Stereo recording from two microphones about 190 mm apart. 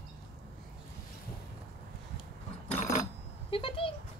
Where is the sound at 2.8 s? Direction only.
40° left (ahead or behind).